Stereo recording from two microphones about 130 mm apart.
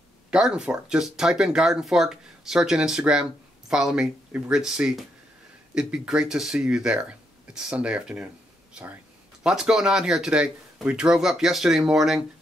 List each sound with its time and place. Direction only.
0.3 s speech: 5° right (ahead or behind)
9.4 s speech: 5° right (ahead or behind)